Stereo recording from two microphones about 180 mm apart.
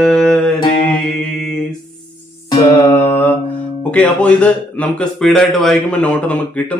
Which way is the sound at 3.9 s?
5° left (ahead or behind).